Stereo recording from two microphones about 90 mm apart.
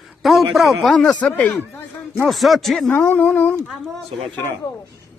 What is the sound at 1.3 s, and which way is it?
Speech, 20° left (ahead or behind).